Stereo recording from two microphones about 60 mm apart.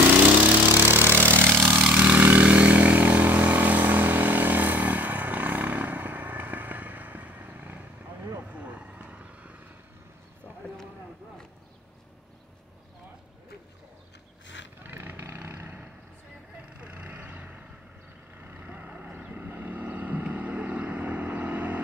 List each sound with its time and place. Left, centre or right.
0.7 s vehicle: right
1.3 s vehicle: centre
1.7 s vehicle: centre
14.8 s roaring cats: right
15.1 s vehicle: right
16.8 s vehicle: right